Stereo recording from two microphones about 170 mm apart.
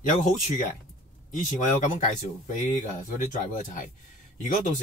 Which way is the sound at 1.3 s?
50° left (ahead or behind).